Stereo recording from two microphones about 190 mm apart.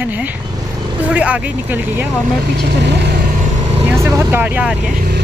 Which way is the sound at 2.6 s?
60° right (ahead or behind).